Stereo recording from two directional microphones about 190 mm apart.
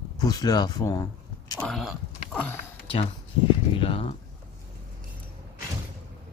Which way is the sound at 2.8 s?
30° left (ahead or behind).